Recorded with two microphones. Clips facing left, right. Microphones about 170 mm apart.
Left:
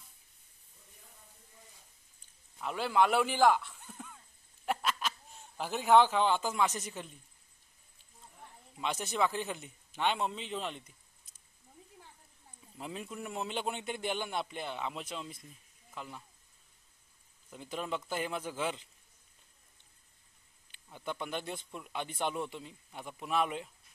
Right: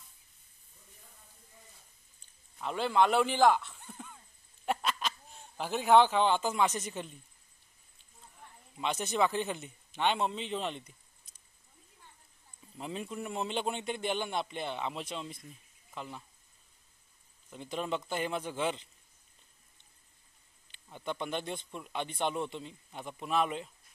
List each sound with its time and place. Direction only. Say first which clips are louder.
2.6 s a man's voice: right 1 dB; 5° left (ahead or behind)
3.9 s dog: right 1 dB; 10° right (ahead or behind)
4.6 s goat: right 1 dB; 5° left (ahead or behind)
5.6 s a man's voice: right 1 dB; 5° left (ahead or behind)
8.8 s a man's voice: right 2 dB; centre (ahead or behind)
12.7 s a man's voice: right 3 dB; centre (ahead or behind)
17.5 s a man's voice: right 2 dB; 5° left (ahead or behind)
21.0 s a man's voice: right 2 dB; 10° left (ahead or behind)